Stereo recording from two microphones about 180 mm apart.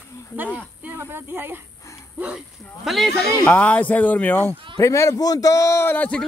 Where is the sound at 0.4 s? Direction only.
10° right (ahead or behind).